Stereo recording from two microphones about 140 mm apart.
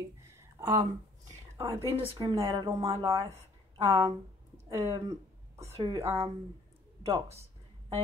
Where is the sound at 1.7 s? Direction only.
45° right (ahead or behind).